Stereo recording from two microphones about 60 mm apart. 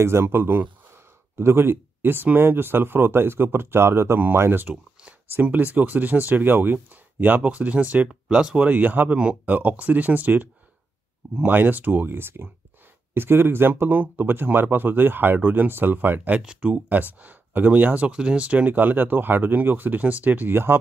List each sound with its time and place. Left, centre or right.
0.0 s speech: right
8.1 s speech: centre
8.6 s speech: right
16.3 s speech: centre; by 20.8 s right